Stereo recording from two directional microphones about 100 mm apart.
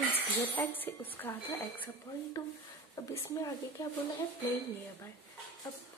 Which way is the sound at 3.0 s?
35° left (ahead or behind).